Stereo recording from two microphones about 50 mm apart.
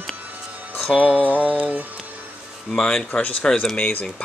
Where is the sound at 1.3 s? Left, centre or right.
Right.